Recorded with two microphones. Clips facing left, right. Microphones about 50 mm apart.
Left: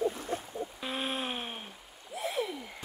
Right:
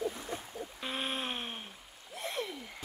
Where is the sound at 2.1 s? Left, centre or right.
Centre.